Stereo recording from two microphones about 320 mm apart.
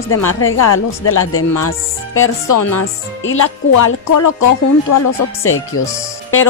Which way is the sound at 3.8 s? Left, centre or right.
Left.